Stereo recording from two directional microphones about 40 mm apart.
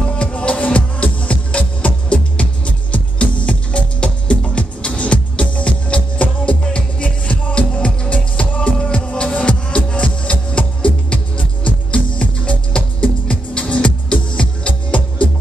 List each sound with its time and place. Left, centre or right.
0.2 s music: left